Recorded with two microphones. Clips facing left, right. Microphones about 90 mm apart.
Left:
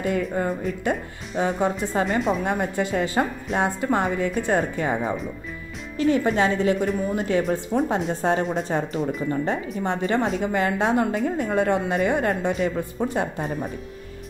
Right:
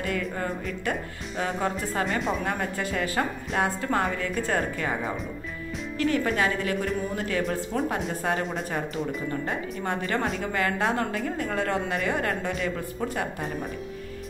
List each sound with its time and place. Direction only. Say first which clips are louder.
0.0 s speech: left 5 dB; 20° left (ahead or behind)
2.0 s speech: left 5 dB; centre (ahead or behind)
2.4 s speech: left 5 dB; 20° left (ahead or behind)
5.9 s speech: left 5 dB; 20° left (ahead or behind)
8.1 s speech: left 5 dB; 30° left (ahead or behind)